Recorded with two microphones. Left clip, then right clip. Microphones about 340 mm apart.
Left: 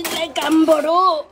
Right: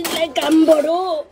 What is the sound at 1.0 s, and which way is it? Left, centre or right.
Speech, left.